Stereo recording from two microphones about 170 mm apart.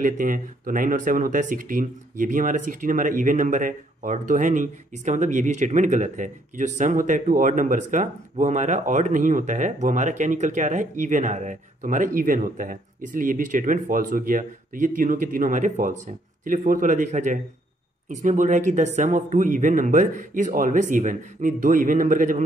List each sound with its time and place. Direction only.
0.0 s speech: 50° right (ahead or behind)